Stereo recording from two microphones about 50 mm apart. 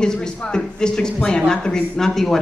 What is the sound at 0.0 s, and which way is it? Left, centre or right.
Speech, centre.